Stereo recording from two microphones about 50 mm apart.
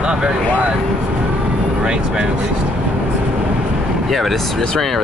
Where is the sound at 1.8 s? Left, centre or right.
Centre.